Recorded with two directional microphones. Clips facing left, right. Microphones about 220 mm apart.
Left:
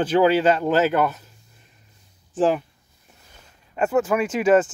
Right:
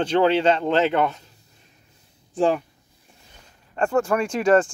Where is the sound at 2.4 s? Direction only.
5° left (ahead or behind).